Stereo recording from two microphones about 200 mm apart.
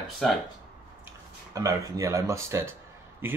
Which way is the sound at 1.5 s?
15° right (ahead or behind).